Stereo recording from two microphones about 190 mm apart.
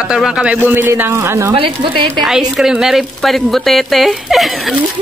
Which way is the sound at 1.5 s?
30° right (ahead or behind).